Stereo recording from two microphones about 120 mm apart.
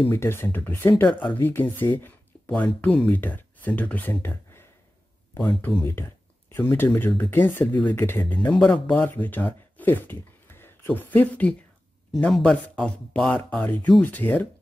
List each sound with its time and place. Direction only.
0.1 s speech: 20° left (ahead or behind)
5.9 s speech: 20° left (ahead or behind)